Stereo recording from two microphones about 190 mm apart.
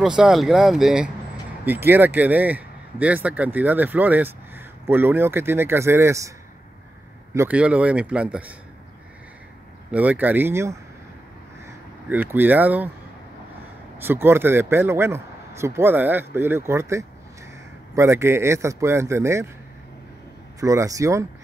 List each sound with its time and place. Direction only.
0.0 s speech: 5° right (ahead or behind)
7.3 s speech: 5° right (ahead or behind)
9.8 s speech: 10° right (ahead or behind)
12.1 s speech: 10° right (ahead or behind)
13.9 s speech: 10° right (ahead or behind)
20.6 s speech: 15° right (ahead or behind)